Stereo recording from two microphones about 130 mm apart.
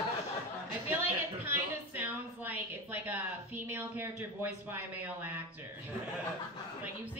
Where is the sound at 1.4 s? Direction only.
15° right (ahead or behind).